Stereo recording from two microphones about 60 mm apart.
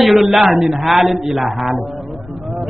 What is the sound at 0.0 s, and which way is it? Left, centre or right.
Speech, centre.